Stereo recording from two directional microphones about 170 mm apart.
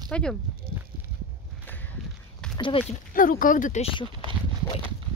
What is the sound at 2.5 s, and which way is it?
Speech, 30° left (ahead or behind).